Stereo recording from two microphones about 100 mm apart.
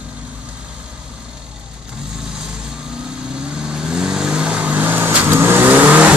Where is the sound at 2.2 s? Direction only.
5° right (ahead or behind).